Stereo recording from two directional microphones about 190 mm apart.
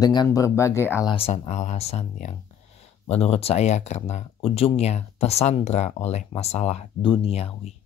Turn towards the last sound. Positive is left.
turn(degrees=30)  # may be behind; listen again after turning